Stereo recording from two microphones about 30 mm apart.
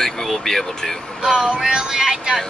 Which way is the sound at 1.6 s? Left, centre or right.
Right.